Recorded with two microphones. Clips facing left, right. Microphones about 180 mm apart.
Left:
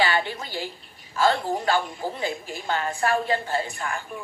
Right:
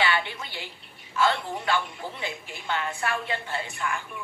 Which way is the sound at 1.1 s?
35° left (ahead or behind).